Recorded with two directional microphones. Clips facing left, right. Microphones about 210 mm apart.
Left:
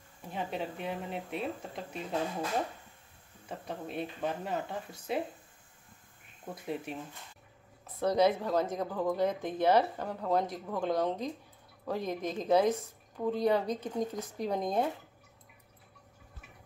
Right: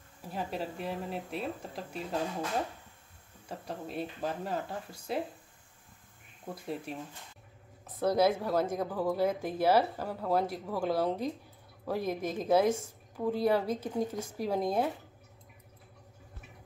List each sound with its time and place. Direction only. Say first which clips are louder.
0.2 s speech: even; centre (ahead or behind)
3.4 s speech: even; centre (ahead or behind)
6.4 s speech: left 1 dB; centre (ahead or behind)
7.8 s a sound: even; 5° right (ahead or behind)
8.4 s speech: right 1 dB; 5° right (ahead or behind)